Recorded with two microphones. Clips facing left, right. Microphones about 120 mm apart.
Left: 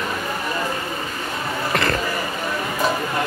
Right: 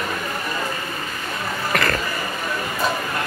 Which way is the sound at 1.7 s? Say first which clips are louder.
Even; 25° left (ahead or behind).